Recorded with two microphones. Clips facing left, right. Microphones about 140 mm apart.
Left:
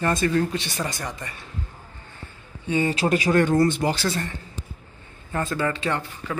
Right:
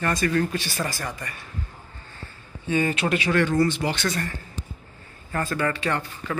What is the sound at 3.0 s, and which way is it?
Speech, 35° left (ahead or behind).